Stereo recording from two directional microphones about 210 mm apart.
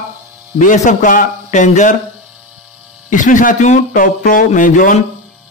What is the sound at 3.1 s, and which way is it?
A man's voice, 35° left (ahead or behind).